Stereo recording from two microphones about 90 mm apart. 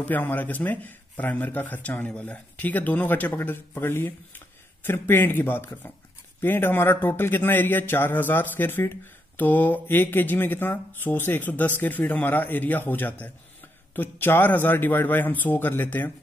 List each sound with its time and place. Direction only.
0.0 s speech: 20° left (ahead or behind)